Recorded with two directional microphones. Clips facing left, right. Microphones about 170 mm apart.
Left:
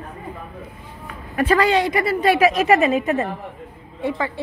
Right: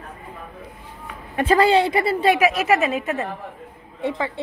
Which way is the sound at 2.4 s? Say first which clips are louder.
Left 3 dB; 10° right (ahead or behind).